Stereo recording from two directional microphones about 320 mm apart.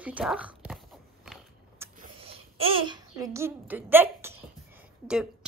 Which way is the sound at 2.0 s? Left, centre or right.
Centre.